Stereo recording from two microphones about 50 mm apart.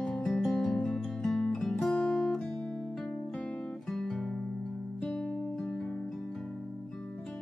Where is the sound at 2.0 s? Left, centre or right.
Left.